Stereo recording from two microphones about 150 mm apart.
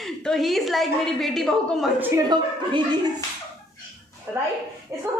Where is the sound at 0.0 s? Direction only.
Centre (ahead or behind).